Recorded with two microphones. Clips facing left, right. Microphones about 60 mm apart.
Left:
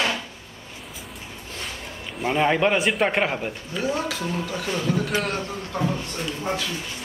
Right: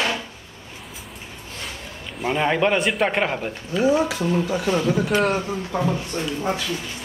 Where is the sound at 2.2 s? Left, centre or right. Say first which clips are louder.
Even; centre.